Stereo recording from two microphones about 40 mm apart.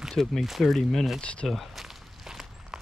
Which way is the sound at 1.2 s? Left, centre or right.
Left.